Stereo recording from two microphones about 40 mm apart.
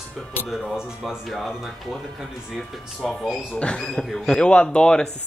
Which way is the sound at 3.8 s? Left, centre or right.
Centre.